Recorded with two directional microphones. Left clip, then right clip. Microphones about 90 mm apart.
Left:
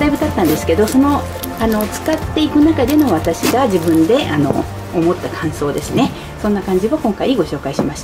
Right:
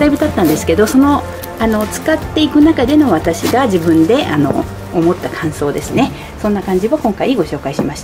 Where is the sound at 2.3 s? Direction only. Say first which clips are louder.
Right 2 dB; 15° right (ahead or behind).